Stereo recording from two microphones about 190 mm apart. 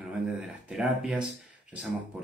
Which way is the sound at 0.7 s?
5° right (ahead or behind).